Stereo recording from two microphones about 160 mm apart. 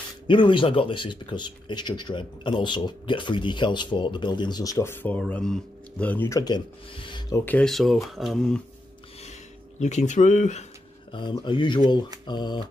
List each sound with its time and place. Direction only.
0.3 s speech: 30° left (ahead or behind)
7.4 s speech: 5° left (ahead or behind)
9.2 s a sound: 45° left (ahead or behind)
11.1 s speech: 30° left (ahead or behind)